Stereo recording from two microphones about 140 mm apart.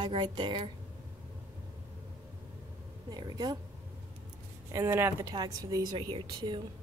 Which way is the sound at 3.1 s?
30° right (ahead or behind).